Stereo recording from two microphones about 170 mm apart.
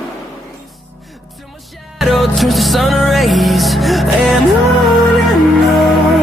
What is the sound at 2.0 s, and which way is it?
Music, centre (ahead or behind).